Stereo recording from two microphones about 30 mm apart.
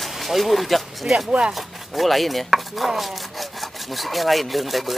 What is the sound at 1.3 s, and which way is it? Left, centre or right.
Speech, right.